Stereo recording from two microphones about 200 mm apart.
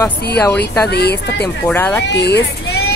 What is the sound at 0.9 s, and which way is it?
Speech, 55° left (ahead or behind).